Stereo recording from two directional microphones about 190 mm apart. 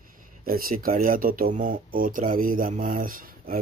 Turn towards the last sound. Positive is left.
turn(degrees=-50)  # may be behind; listen again after turning